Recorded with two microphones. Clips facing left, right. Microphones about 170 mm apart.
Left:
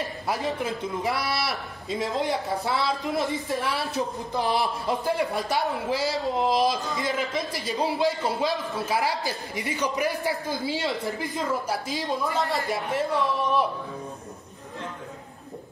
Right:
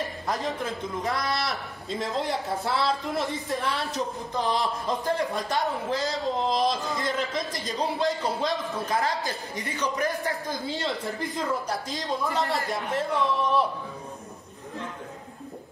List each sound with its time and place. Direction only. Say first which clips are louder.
0.4 s speech: left 2 dB; 15° left (ahead or behind)
1.1 s speech: even; 5° left (ahead or behind)
3.8 s speech: left 2 dB; 20° right (ahead or behind)
4.3 s speech: left 1 dB; 10° left (ahead or behind)